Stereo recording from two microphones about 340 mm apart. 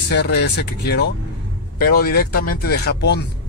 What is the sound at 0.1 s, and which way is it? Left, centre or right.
Speech, left.